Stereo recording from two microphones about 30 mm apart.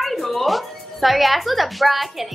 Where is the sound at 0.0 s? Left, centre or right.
Centre.